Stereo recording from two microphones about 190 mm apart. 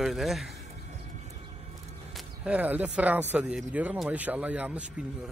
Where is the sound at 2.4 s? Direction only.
5° right (ahead or behind).